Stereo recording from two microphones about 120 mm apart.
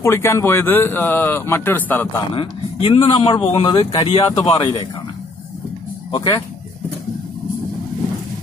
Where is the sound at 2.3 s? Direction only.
50° left (ahead or behind).